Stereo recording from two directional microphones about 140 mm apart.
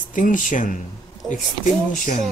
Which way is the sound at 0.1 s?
70° left (ahead or behind).